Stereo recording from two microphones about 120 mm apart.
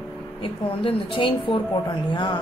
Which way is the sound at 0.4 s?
45° left (ahead or behind).